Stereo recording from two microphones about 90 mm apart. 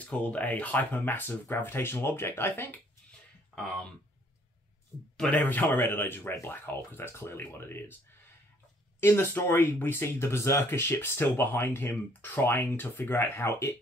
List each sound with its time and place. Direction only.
0.0 s speech: 15° left (ahead or behind)
5.3 s speech: 20° left (ahead or behind)
9.0 s speech: 25° left (ahead or behind)